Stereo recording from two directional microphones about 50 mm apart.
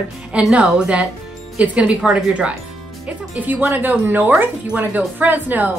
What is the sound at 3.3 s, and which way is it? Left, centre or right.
Speech, right.